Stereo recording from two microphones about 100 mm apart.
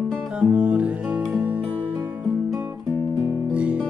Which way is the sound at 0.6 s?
15° right (ahead or behind).